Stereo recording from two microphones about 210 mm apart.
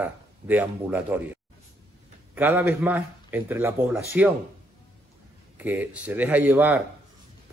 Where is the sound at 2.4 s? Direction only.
10° right (ahead or behind).